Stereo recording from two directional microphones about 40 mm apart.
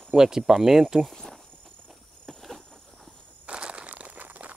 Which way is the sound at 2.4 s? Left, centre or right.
Centre.